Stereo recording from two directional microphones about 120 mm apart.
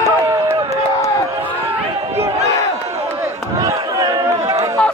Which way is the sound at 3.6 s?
30° right (ahead or behind).